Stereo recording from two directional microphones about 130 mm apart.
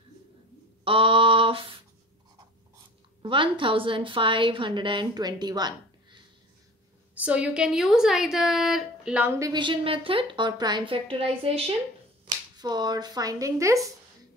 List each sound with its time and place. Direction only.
0.8 s a sound: 45° right (ahead or behind)
3.2 s a woman's voice: 40° right (ahead or behind)
7.2 s a woman's voice: 10° right (ahead or behind)
9.4 s a woman's voice: 35° right (ahead or behind)
12.5 s a woman's voice: 30° right (ahead or behind)